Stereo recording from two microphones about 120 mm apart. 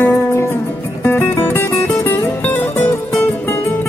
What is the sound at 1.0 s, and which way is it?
Music, 20° left (ahead or behind).